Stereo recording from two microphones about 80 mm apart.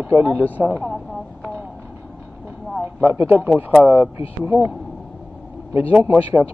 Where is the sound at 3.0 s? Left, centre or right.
Right.